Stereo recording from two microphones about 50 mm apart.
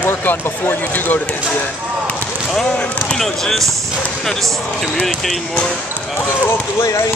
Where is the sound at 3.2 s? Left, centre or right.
Centre.